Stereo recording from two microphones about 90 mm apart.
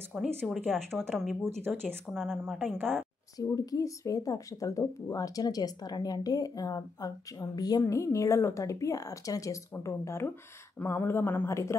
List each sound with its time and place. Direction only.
0.1 s speech: 10° right (ahead or behind)
0.5 s speech: 5° left (ahead or behind)
3.3 s speech: 45° left (ahead or behind)
7.8 s a woman's voice: 35° left (ahead or behind)